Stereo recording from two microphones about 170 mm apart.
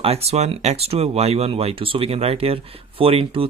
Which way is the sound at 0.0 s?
35° right (ahead or behind).